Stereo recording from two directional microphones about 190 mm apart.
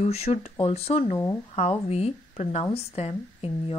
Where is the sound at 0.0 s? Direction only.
35° left (ahead or behind).